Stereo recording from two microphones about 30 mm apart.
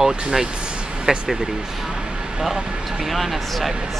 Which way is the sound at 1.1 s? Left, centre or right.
Right.